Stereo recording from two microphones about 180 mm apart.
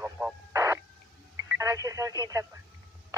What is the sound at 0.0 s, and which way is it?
Radio, 10° right (ahead or behind).